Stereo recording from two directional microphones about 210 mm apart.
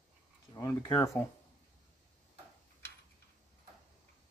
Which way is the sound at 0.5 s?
15° left (ahead or behind).